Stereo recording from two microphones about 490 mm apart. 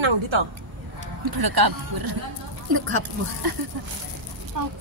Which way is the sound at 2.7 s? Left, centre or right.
Right.